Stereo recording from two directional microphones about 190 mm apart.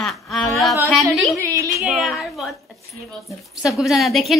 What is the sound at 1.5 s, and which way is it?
Speech, 15° right (ahead or behind).